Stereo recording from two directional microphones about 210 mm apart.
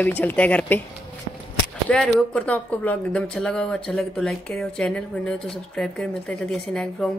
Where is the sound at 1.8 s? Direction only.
5° left (ahead or behind).